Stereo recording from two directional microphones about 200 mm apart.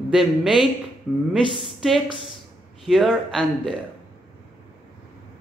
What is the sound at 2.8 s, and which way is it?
Speech, centre (ahead or behind).